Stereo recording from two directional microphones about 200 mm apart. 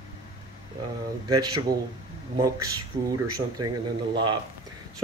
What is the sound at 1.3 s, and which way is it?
Speech, 20° right (ahead or behind).